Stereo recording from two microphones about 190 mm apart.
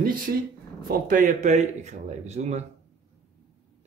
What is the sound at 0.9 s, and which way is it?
Speech, 45° right (ahead or behind).